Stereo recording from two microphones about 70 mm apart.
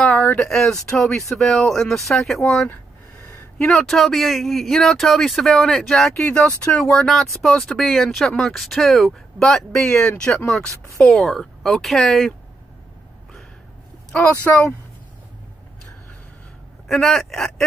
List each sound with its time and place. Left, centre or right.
0.0 s a sound: centre
0.5 s speech: centre
6.2 s speech: centre
6.8 s speech: centre
14.4 s speech: centre
16.8 s speech: centre